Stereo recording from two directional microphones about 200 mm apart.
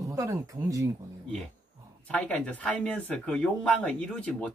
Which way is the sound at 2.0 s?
5° left (ahead or behind).